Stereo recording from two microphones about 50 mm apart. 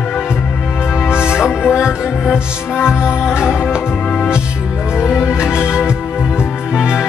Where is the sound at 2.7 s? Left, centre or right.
Left.